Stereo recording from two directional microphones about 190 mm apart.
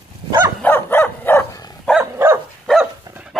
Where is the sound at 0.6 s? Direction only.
10° left (ahead or behind).